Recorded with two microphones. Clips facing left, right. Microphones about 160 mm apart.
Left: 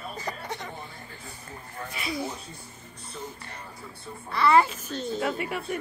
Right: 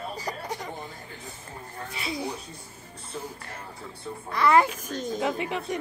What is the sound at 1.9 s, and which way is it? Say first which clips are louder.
Speech: even; 30° right (ahead or behind).